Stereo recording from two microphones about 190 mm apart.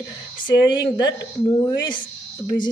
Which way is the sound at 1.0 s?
20° left (ahead or behind).